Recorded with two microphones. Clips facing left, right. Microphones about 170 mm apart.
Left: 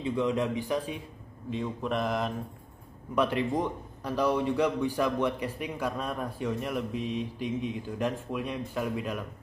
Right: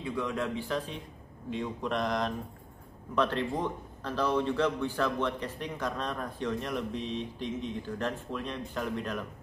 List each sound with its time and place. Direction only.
0.0 s a man's voice: 20° left (ahead or behind)
1.5 s mantra: centre (ahead or behind)
3.2 s a man's voice: 10° left (ahead or behind)